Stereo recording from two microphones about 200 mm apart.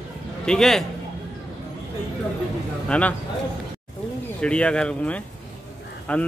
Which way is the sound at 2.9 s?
5° left (ahead or behind).